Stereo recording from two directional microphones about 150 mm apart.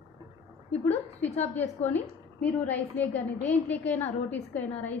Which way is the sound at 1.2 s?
45° left (ahead or behind).